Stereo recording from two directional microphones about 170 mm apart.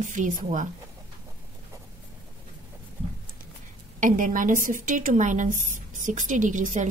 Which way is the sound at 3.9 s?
50° right (ahead or behind).